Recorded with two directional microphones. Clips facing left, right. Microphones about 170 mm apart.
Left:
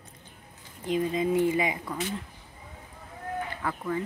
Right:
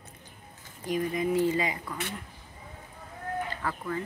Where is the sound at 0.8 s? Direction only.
20° left (ahead or behind).